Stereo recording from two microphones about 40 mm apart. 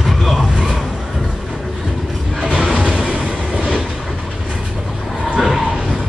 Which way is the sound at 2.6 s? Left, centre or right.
Centre.